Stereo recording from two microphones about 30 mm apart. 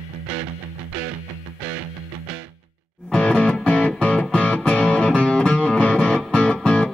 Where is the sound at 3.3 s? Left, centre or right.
Left.